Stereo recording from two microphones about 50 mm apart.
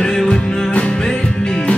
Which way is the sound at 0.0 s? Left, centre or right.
Centre.